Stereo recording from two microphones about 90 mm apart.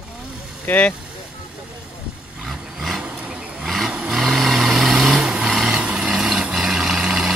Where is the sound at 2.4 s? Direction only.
Centre (ahead or behind).